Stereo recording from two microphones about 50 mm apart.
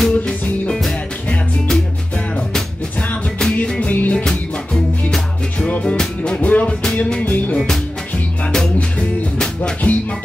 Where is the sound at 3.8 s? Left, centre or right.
Left.